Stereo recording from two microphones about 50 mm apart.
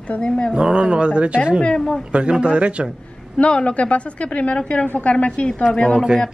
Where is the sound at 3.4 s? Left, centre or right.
Left.